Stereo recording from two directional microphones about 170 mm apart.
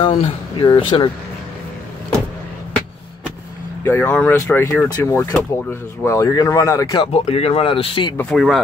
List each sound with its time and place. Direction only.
0.0 s speech: 30° left (ahead or behind)
3.8 s speech: 10° left (ahead or behind)
7.1 s speech: 35° left (ahead or behind)
8.2 s speech: centre (ahead or behind)